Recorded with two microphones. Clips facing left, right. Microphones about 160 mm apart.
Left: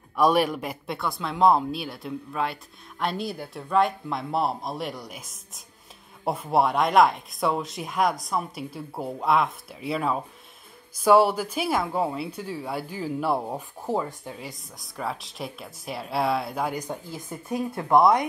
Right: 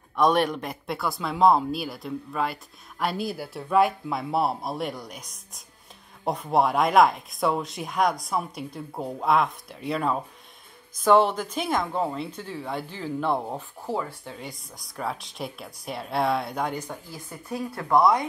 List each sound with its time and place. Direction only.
0.1 s speech: 5° left (ahead or behind)
14.4 s speech: centre (ahead or behind)
16.7 s speech: 20° left (ahead or behind)